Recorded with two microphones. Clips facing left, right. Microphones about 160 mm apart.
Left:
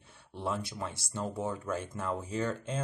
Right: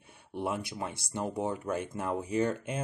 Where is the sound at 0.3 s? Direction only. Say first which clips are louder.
Right 2 dB; 15° right (ahead or behind).